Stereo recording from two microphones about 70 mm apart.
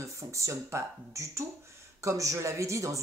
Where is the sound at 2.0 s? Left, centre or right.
Right.